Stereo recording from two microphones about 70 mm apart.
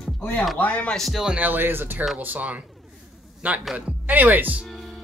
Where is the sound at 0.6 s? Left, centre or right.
Centre.